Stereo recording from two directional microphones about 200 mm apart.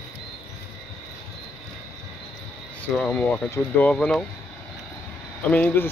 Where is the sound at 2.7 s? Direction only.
5° left (ahead or behind).